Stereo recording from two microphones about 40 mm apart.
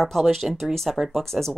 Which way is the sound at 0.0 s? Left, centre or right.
Centre.